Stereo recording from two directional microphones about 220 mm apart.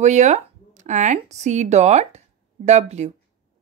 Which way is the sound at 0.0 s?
30° right (ahead or behind).